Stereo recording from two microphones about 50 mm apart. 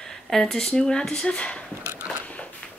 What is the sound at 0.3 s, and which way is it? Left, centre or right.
Speech, centre.